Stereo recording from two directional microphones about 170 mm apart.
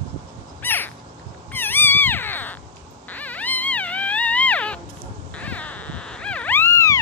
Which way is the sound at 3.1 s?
10° left (ahead or behind).